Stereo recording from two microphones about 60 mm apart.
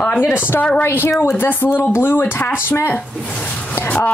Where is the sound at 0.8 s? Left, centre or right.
Left.